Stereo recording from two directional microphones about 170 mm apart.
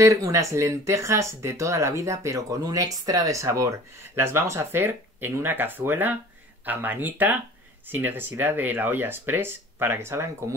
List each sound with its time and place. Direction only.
0.0 s speech: 20° right (ahead or behind)